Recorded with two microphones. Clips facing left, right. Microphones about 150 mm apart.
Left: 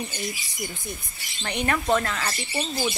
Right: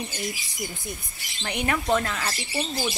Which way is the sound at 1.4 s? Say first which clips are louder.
Left 1 dB; 10° right (ahead or behind).